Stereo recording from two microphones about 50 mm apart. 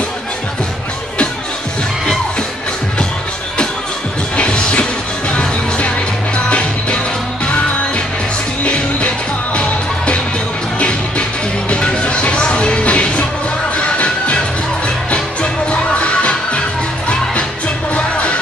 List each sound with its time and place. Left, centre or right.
4.4 s music: left
8.6 s music: left
11.7 s music: left
17.9 s music: left